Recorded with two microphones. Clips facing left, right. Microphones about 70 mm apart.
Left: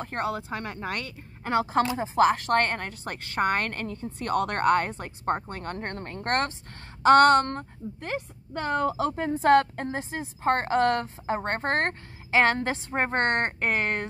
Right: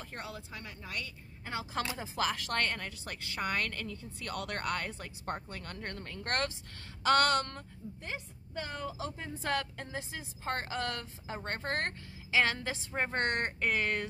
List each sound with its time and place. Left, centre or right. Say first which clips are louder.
0.0 s a woman's voice: left 13 dB; left
2.0 s a woman's voice: left 12 dB; left